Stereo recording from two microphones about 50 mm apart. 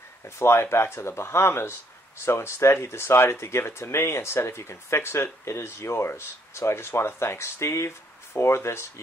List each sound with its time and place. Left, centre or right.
0.4 s speech: left